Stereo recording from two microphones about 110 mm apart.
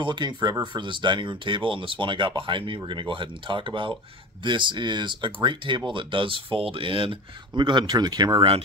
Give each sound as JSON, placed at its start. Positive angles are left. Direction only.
{"t": 0.0, "sound": "speech", "side_deg": -45}